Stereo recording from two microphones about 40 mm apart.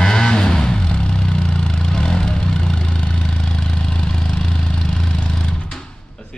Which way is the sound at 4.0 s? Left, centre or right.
Centre.